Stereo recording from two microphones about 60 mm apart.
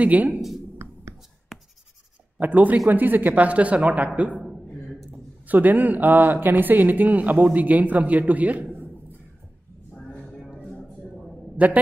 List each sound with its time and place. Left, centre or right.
0.0 s speech: right
2.3 s speech: right
5.5 s speech: right
9.9 s music: centre
11.5 s a man's voice: right